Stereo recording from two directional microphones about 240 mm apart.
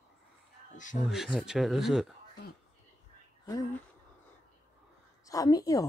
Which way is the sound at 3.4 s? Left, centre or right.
Centre.